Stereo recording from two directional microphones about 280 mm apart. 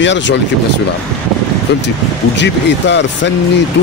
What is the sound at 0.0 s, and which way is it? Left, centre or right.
Speech, left.